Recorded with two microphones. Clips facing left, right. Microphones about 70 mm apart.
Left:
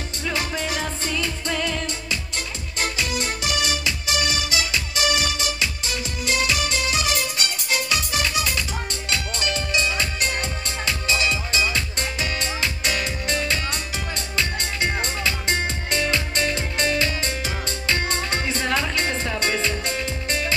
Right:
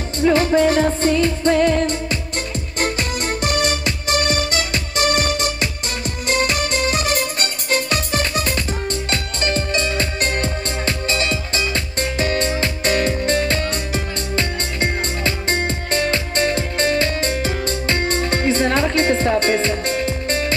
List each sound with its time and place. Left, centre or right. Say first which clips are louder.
0.2 s music: right 13 dB; right